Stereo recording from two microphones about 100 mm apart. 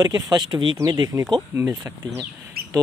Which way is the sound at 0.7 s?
40° right (ahead or behind).